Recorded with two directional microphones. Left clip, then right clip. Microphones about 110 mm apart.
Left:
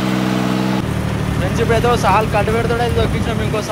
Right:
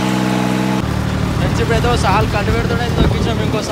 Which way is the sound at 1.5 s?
10° right (ahead or behind).